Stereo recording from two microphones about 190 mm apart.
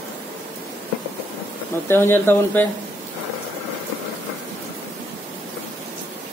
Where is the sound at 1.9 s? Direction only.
10° left (ahead or behind).